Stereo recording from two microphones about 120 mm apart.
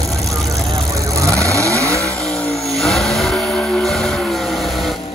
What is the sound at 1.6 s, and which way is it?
Vehicle, 25° right (ahead or behind).